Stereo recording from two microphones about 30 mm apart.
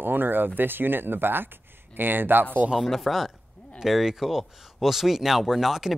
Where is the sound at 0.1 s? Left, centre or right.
Right.